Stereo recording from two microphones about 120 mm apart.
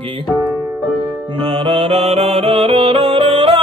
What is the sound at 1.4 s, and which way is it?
Music, 50° right (ahead or behind).